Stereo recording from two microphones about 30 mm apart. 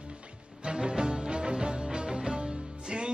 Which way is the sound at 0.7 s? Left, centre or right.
Right.